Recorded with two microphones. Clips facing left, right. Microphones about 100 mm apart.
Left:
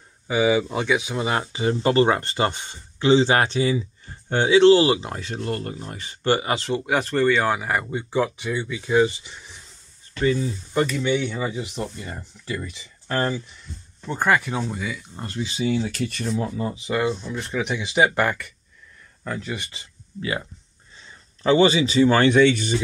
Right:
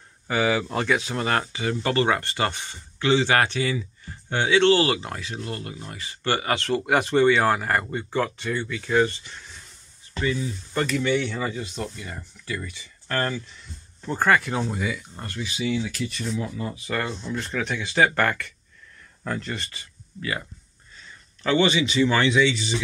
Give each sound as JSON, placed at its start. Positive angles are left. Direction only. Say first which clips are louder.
{"t": 0.3, "sound": "speech", "louder": "left 3 dB", "side_deg": 5}
{"t": 1.5, "sound": "speech", "louder": "left 4 dB", "side_deg": 25}
{"t": 5.2, "sound": "speech", "louder": "left 5 dB", "side_deg": 45}
{"t": 6.2, "sound": "speech", "louder": "left 3 dB", "side_deg": 20}
{"t": 6.8, "sound": "speech", "louder": "right 3 dB", "side_deg": -5}
{"t": 10.2, "sound": "speech", "louder": "left 5 dB", "side_deg": 35}
{"t": 10.7, "sound": "speech", "louder": "left 1 dB", "side_deg": 5}
{"t": 12.0, "sound": "speech", "louder": "left 2 dB", "side_deg": 25}
{"t": 14.0, "sound": "speech", "louder": "even", "side_deg": 5}
{"t": 15.1, "sound": "speech", "louder": "left 3 dB", "side_deg": 25}
{"t": 16.4, "sound": "speech", "louder": "left 4 dB", "side_deg": 30}
{"t": 17.6, "sound": "speech", "louder": "left 2 dB", "side_deg": 15}
{"t": 19.2, "sound": "speech", "louder": "even", "side_deg": 0}
{"t": 19.5, "sound": "speech", "louder": "left 2 dB", "side_deg": 15}